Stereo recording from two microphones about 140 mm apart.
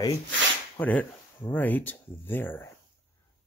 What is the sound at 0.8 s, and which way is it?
Speech, 10° left (ahead or behind).